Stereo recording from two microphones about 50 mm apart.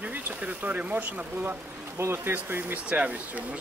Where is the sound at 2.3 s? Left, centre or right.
Right.